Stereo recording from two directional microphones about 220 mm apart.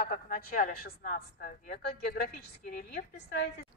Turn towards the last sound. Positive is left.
turn(degrees=45)  # may be behind; listen again after turning